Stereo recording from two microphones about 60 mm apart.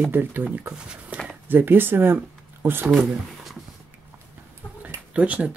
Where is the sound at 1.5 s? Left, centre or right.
Right.